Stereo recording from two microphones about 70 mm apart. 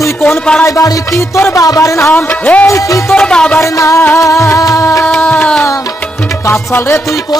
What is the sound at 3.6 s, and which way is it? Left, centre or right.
Music, left.